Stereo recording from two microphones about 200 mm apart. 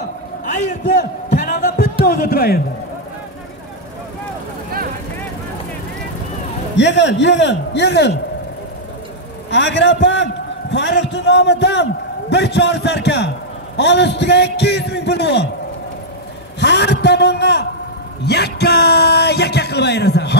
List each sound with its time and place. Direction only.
1.3 s a sound: 40° left (ahead or behind)
2.0 s a man's voice: 50° left (ahead or behind)
6.8 s a man's voice: 60° left (ahead or behind)
9.5 s a man's voice: 60° left (ahead or behind)
16.5 s a man's voice: 60° left (ahead or behind)